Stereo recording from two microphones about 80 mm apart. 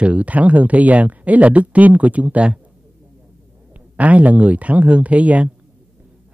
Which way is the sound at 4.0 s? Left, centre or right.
Centre.